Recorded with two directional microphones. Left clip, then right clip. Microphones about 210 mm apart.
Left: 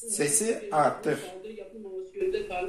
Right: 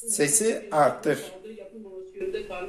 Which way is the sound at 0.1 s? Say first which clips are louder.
Right 4 dB; 40° right (ahead or behind).